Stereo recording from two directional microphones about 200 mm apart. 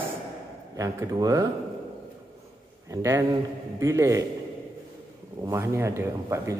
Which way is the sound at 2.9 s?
15° right (ahead or behind).